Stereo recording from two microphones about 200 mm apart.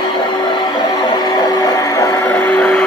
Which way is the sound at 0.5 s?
20° left (ahead or behind).